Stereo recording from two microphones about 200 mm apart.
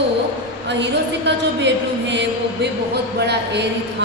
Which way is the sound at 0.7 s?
60° right (ahead or behind).